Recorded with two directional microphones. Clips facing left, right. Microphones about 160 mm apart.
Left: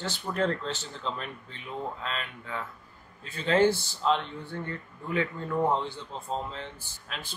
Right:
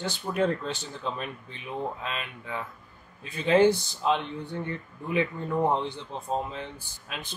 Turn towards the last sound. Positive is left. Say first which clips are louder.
# right 2 dB
turn(degrees=-15)  # may be behind; listen again after turning